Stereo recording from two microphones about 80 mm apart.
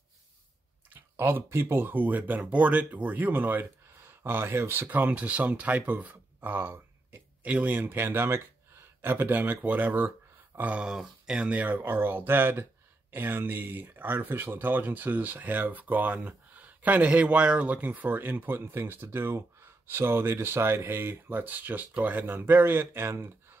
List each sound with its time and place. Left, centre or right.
0.9 s speech: right
10.7 s speech: centre; by 23.6 s right